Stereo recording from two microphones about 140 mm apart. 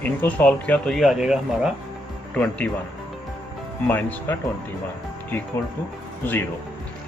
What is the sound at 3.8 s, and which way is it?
Speech, 15° left (ahead or behind).